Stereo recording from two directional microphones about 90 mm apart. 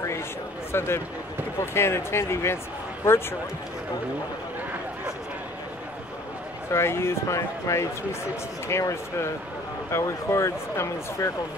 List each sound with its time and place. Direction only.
0.7 s speech: 30° left (ahead or behind)
6.7 s speech: 30° left (ahead or behind)